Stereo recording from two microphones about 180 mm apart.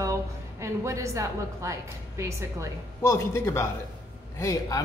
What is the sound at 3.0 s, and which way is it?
A man's voice, 15° left (ahead or behind).